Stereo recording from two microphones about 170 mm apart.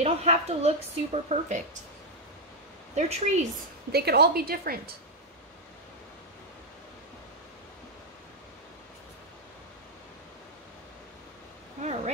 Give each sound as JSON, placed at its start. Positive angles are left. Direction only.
{"t": 0.0, "sound": "a woman's voice", "side_deg": -40}
{"t": 2.9, "sound": "speech", "side_deg": -40}
{"t": 3.9, "sound": "a woman's voice", "side_deg": -70}
{"t": 11.8, "sound": "speech", "side_deg": -40}